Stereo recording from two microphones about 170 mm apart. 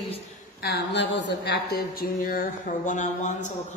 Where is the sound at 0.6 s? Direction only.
85° left; by 2.4 s 60° left (ahead or behind).